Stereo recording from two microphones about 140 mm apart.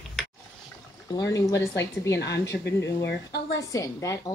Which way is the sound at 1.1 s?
25° left (ahead or behind).